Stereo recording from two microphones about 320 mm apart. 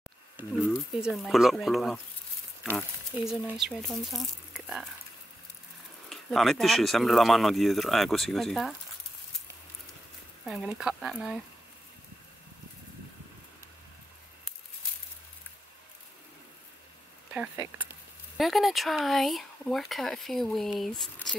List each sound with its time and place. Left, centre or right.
0.4 s speech: centre
3.3 s speech: centre
6.0 s speech: centre
10.4 s speech: centre
17.3 s speech: centre